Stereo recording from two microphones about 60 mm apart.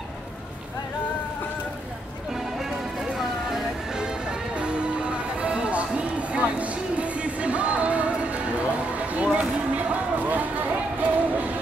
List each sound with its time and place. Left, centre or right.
3.2 s music: centre; by 11.5 s right